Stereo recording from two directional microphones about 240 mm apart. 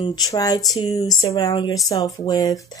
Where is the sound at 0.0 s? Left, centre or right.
Centre.